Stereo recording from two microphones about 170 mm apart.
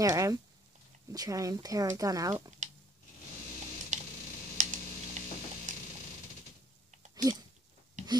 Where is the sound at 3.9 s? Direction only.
45° right (ahead or behind).